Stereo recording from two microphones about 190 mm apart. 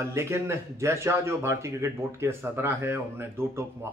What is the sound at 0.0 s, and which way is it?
Speech, 15° right (ahead or behind).